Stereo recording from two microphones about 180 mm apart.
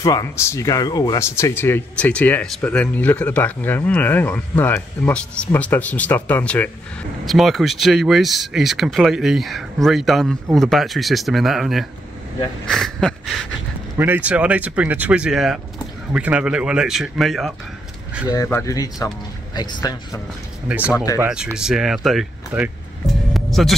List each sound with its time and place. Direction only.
0.0 s speech: 20° left (ahead or behind); by 11.8 s centre (ahead or behind)
12.6 s a sound: centre (ahead or behind)
13.9 s speech: 10° right (ahead or behind)
18.3 s speech: 15° left (ahead or behind)
20.6 s speech: 10° right (ahead or behind)
20.9 s speech: 20° left (ahead or behind)
21.2 s speech: 5° right (ahead or behind)
21.5 s music: 5° right (ahead or behind)